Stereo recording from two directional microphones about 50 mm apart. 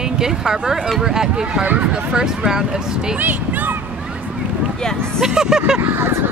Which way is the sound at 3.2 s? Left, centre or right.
Right.